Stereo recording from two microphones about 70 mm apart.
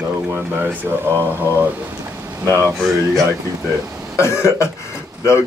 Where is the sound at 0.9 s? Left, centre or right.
Right.